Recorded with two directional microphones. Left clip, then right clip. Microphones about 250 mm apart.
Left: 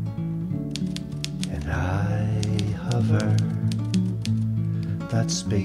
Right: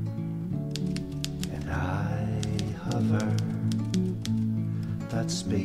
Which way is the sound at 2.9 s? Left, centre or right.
Centre.